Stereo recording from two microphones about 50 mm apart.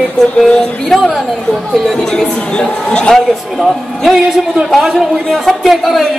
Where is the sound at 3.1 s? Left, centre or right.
Centre.